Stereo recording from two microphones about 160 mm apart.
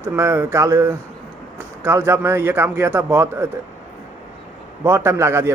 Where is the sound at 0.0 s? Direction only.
15° right (ahead or behind).